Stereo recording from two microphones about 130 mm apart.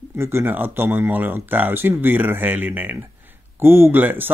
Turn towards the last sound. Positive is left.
turn(degrees=-15)  # may be behind; listen again after turning